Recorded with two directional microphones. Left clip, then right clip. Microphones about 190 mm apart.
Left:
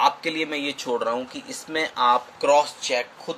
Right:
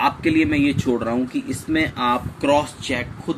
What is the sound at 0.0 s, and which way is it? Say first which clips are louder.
Speech: right 3 dB; 15° left (ahead or behind).